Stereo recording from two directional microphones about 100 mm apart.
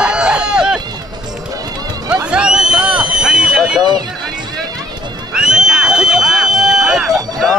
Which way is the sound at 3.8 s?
45° right (ahead or behind).